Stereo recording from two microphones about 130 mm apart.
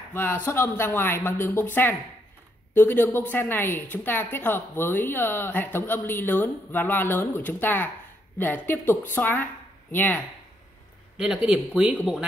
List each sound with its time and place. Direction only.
0.1 s a woman's voice: 15° left (ahead or behind)
11.1 s speech: 5° right (ahead or behind)